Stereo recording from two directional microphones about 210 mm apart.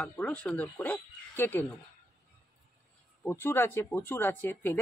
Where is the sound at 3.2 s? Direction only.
10° left (ahead or behind).